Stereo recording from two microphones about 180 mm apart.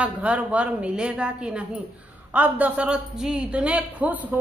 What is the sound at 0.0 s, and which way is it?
A man's voice, 5° right (ahead or behind).